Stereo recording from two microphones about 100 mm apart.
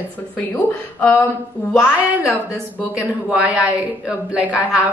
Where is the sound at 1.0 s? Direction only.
20° left (ahead or behind).